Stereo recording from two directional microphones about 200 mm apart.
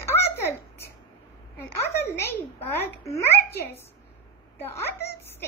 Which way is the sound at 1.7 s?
10° left (ahead or behind).